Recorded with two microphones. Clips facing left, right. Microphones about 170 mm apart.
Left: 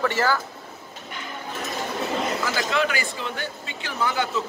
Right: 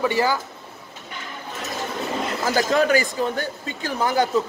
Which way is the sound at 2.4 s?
40° right (ahead or behind).